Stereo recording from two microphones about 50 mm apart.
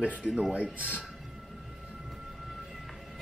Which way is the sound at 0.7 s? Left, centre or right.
Right.